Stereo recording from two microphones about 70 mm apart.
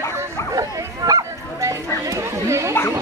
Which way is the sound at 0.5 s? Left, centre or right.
Right.